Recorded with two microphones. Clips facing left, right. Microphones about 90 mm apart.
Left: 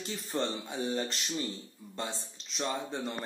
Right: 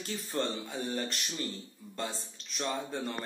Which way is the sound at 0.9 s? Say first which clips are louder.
Left 2 dB; 20° left (ahead or behind).